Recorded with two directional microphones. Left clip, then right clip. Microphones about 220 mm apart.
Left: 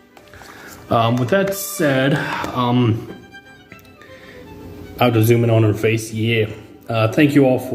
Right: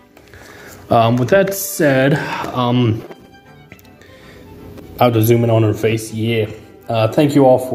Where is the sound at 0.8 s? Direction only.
20° right (ahead or behind).